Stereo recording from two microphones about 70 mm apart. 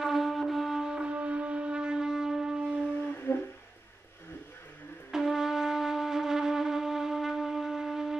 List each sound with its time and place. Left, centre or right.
0.0 s wind instrument: centre
3.0 s humming: left
5.1 s music: centre